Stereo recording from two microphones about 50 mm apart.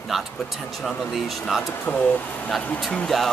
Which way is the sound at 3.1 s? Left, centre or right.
Centre.